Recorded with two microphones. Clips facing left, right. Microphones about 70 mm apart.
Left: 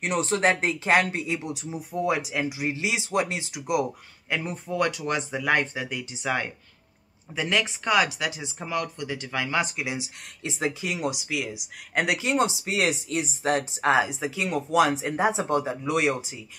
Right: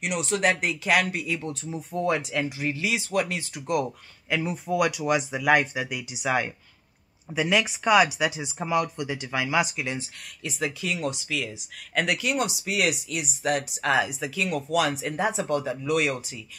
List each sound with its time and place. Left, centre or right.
0.0 s speech: left
1.4 s speech: centre
2.7 s speech: left
3.5 s speech: centre
9.8 s speech: centre
10.4 s speech: left
12.2 s speech: left